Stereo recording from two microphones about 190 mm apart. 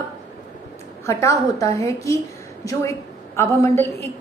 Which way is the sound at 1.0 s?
15° left (ahead or behind).